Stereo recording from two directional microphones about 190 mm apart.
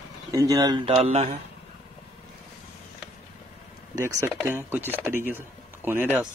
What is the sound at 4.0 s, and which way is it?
Speech, 15° right (ahead or behind).